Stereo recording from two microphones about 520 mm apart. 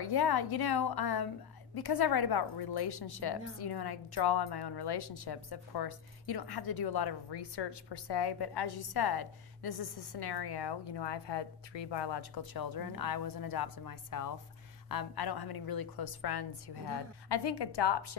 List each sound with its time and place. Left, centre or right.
0.0 s a woman's voice: left